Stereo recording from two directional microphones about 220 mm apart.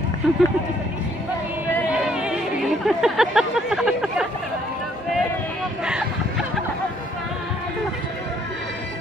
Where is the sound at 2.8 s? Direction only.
Centre (ahead or behind).